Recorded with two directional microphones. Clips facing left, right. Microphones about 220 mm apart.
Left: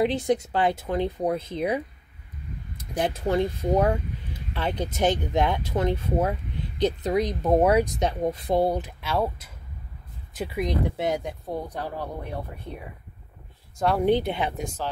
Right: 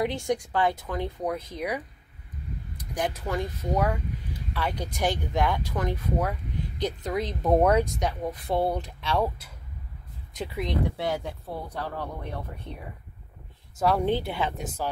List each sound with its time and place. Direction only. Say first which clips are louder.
0.0 s speech: left 4 dB; 20° left (ahead or behind)
2.8 s speech: left 4 dB; 25° left (ahead or behind)
7.4 s speech: even; 5° left (ahead or behind)
13.7 s speech: even; centre (ahead or behind)
14.0 s speech: left 4 dB; 20° left (ahead or behind)
14.6 s speech: left 1 dB; 5° right (ahead or behind)